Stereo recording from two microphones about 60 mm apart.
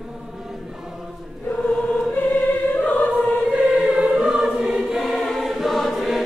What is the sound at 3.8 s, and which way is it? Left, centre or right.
Choir, centre.